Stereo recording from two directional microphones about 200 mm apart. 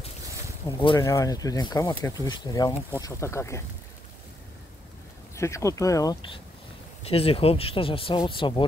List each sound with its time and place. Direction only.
0.7 s speech: 20° left (ahead or behind)
5.3 s speech: 15° left (ahead or behind)